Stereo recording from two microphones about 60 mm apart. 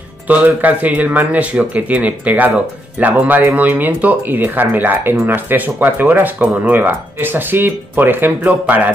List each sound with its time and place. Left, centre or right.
0.3 s speech: right